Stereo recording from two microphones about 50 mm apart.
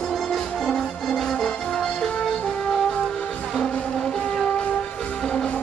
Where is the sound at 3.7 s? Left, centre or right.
Left.